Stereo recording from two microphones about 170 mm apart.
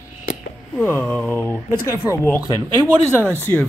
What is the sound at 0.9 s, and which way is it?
A man's voice, 10° left (ahead or behind).